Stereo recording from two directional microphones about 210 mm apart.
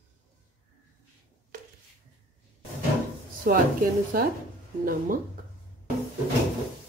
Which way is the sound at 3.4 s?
45° right (ahead or behind).